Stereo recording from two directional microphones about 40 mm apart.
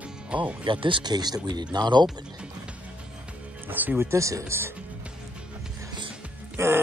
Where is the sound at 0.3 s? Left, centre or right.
Right.